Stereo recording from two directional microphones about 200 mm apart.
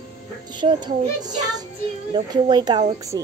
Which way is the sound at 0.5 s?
20° right (ahead or behind).